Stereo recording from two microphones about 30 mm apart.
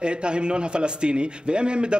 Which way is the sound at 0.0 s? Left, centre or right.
Right.